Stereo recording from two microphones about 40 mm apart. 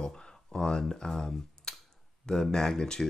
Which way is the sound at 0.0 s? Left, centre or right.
Centre.